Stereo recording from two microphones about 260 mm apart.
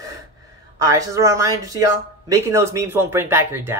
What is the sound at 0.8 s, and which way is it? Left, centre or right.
Speech, centre.